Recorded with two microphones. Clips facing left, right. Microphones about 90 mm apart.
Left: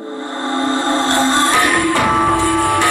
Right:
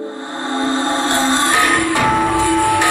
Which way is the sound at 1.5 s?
15° left (ahead or behind).